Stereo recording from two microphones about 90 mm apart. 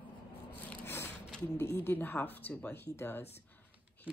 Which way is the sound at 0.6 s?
20° left (ahead or behind).